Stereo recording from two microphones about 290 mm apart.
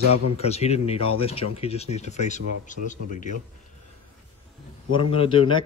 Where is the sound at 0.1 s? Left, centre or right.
Left.